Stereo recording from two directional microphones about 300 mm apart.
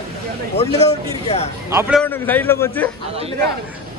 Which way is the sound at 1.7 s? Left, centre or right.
Centre.